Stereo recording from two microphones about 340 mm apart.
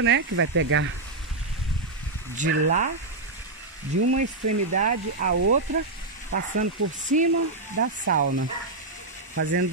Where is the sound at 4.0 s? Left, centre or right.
Right.